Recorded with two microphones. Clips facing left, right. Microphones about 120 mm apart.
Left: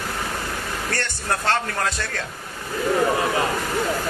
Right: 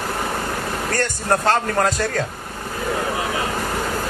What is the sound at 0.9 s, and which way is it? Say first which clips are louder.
A man's voice: right 7 dB; 40° right (ahead or behind).